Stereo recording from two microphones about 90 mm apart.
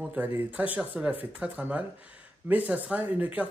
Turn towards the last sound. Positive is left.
turn(degrees=-15)  # may be behind; listen again after turning